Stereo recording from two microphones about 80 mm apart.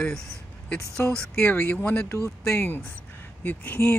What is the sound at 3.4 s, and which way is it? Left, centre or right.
Speech, left.